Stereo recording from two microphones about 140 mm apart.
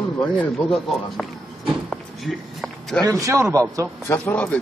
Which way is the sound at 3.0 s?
25° right (ahead or behind).